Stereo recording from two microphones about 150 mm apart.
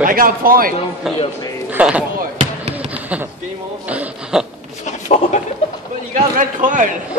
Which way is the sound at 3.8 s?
10° right (ahead or behind).